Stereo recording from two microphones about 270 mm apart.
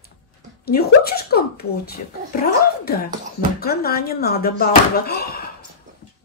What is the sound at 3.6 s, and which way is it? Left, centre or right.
Speech, left.